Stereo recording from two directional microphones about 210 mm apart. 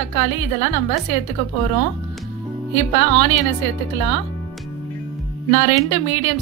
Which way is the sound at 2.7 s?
30° left (ahead or behind).